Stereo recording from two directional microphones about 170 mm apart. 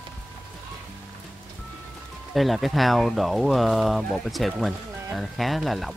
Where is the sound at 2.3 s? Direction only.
Centre (ahead or behind).